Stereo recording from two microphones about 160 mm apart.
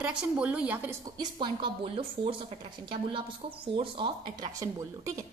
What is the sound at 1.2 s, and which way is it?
A woman's voice, 30° right (ahead or behind).